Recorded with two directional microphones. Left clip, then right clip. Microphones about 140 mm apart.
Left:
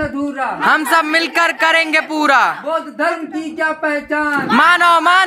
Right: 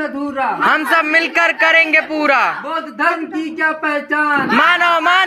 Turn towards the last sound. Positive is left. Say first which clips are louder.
# left 2 dB
turn(degrees=25)  # may be behind; listen again after turning